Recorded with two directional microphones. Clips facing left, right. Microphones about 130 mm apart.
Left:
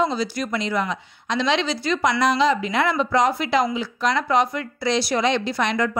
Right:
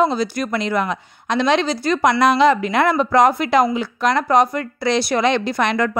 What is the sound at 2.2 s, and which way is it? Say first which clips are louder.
A woman's voice: right 6 dB; 60° right (ahead or behind).